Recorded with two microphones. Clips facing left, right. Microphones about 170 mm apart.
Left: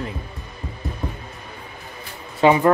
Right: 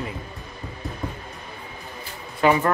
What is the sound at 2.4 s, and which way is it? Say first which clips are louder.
Speech: left 3 dB; 20° left (ahead or behind).